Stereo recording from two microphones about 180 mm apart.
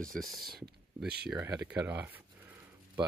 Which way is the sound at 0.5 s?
60° right (ahead or behind).